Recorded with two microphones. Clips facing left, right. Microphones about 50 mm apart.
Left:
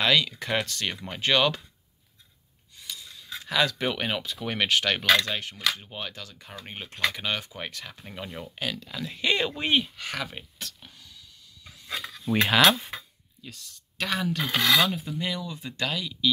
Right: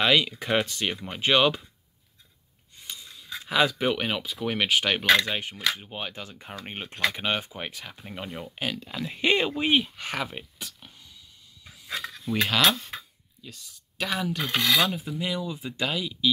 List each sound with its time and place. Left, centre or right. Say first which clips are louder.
0.0 s speech: right 1 dB; centre
2.8 s a sound: even; right
3.2 s a sound: right 2 dB; centre
3.8 s speech: right 2 dB; centre; by 9.5 s right
9.5 s speech: right 2 dB; centre
9.9 s speech: right 2 dB; right
10.3 s speech: right 1 dB; centre
12.4 s speech: left 3 dB; centre
12.9 s a sound: even; centre
14.8 s filing: even; centre
15.4 s speech: right 2 dB; centre